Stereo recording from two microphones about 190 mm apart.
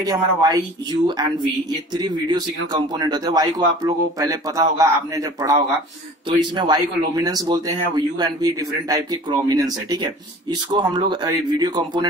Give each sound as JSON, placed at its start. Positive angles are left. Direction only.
{"t": 0.0, "sound": "speech", "side_deg": -20}